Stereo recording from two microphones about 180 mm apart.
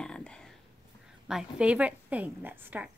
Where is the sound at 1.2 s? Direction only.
5° right (ahead or behind).